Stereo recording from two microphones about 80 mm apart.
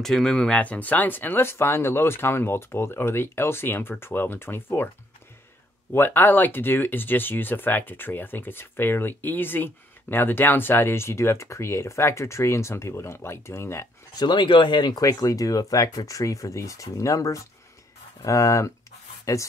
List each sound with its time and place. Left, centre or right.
0.0 s speech: centre; by 4.8 s left
5.9 s speech: left
14.1 s speech: left
15.0 s speech: left